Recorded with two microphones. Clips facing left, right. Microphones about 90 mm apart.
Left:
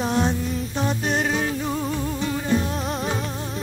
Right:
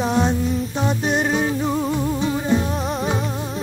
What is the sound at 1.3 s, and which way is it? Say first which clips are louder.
Music: right 4 dB; 20° right (ahead or behind).